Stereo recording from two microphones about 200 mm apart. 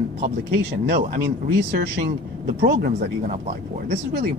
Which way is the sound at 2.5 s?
50° right (ahead or behind).